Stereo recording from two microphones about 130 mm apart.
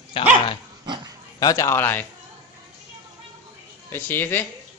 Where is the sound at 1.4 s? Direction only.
25° left (ahead or behind).